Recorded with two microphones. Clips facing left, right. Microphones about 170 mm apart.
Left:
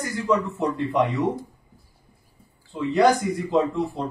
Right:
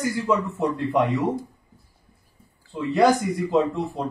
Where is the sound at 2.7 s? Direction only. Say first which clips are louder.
Even; centre (ahead or behind).